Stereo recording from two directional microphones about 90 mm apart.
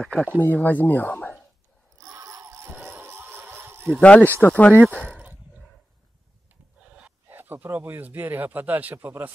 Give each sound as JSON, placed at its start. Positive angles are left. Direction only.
{"t": 0.0, "sound": "speech", "side_deg": 10}
{"t": 0.4, "sound": "speech", "side_deg": 20}
{"t": 2.0, "sound": "jingle bell", "side_deg": -40}
{"t": 4.0, "sound": "speech", "side_deg": 15}
{"t": 7.2, "sound": "speech", "side_deg": -25}